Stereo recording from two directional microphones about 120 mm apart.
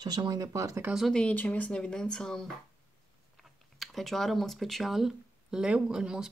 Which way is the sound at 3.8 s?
Centre (ahead or behind).